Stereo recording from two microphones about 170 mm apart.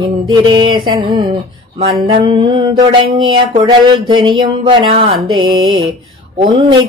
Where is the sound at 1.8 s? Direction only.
30° right (ahead or behind).